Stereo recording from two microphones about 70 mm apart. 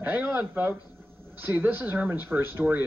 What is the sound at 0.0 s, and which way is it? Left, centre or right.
A man's voice, right.